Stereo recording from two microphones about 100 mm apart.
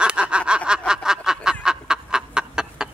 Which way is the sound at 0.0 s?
10° right (ahead or behind).